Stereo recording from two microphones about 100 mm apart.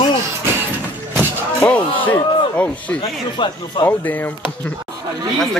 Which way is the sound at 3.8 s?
20° left (ahead or behind).